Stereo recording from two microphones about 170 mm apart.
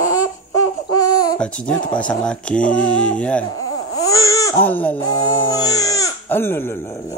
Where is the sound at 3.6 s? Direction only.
20° left (ahead or behind).